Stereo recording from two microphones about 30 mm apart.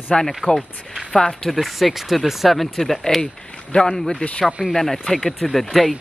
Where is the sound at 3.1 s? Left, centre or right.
Left.